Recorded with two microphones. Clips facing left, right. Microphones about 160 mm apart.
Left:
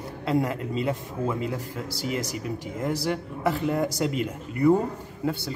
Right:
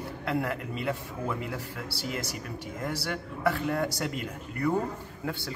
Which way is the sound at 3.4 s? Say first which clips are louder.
Left 2 dB; 15° left (ahead or behind).